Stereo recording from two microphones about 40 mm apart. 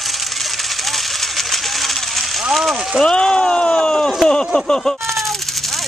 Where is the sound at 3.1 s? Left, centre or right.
Left.